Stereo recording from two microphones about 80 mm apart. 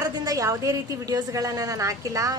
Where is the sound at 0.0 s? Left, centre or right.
Right.